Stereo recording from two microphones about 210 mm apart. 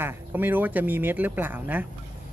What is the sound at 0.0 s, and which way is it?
Speech, 10° right (ahead or behind).